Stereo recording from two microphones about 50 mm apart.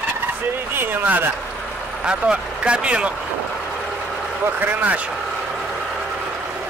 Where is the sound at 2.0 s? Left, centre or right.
Right.